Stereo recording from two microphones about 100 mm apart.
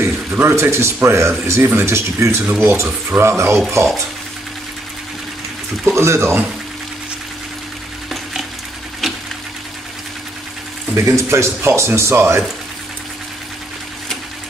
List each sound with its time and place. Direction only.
0.0 s speech: 25° right (ahead or behind)
5.9 s speech: 25° right (ahead or behind)
8.1 s frying: centre (ahead or behind)
11.0 s speech: 30° right (ahead or behind)